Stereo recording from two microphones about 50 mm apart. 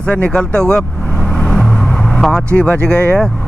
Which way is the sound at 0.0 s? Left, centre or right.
Left.